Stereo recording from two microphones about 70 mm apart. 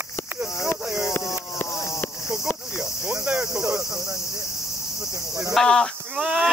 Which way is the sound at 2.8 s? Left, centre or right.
Centre.